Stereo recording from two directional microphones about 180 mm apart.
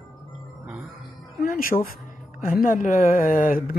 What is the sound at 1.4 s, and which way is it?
Speech, 55° left (ahead or behind).